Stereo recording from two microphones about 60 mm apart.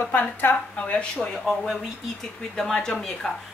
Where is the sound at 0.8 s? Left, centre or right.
Centre.